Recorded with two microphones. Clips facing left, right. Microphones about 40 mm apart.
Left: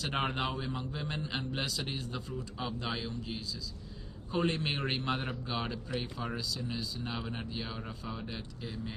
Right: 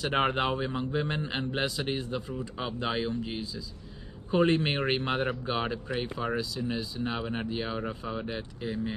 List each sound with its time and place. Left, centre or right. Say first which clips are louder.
0.0 s a man's voice: right 6 dB; right